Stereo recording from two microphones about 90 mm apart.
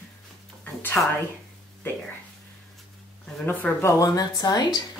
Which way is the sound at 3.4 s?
20° left (ahead or behind).